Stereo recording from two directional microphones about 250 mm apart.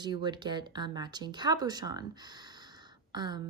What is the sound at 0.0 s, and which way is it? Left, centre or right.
A woman's voice, centre.